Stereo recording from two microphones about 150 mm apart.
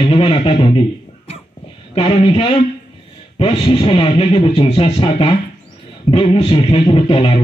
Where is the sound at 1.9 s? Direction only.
40° left (ahead or behind).